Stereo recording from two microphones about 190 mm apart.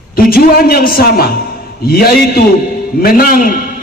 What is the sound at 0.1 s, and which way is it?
A man's voice, 50° left (ahead or behind).